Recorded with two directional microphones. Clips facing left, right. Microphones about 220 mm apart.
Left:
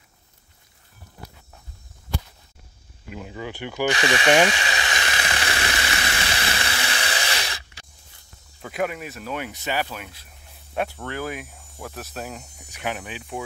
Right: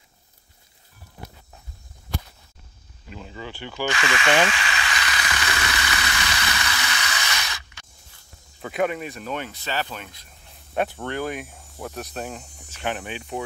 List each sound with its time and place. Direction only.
3.1 s speech: 10° left (ahead or behind)
3.9 s speech: 35° left (ahead or behind)
4.6 s a sound: 25° left (ahead or behind)
8.6 s speech: centre (ahead or behind)
9.5 s speech: 15° left (ahead or behind)